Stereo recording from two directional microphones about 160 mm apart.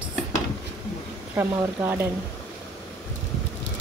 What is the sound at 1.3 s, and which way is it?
Speech, 15° right (ahead or behind).